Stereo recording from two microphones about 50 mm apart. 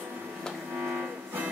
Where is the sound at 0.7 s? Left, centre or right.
Right.